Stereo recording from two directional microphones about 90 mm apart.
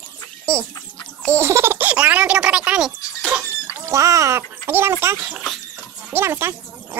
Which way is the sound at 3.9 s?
35° right (ahead or behind).